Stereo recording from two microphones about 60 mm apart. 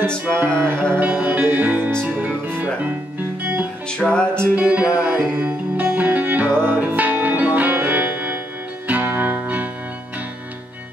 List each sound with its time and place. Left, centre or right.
0.3 s music: right
4.0 s music: centre
4.6 s music: right